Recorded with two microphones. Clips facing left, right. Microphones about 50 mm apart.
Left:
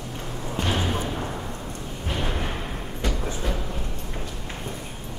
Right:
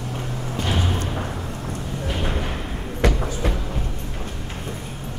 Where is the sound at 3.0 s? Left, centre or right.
Right.